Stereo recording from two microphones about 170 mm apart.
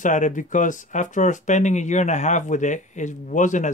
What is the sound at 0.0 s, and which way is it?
Speech, 50° left (ahead or behind).